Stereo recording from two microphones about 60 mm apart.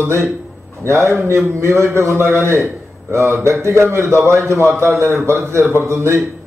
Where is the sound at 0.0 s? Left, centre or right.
Right.